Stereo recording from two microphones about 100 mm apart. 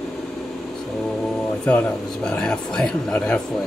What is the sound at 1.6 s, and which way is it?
Speech, 10° left (ahead or behind).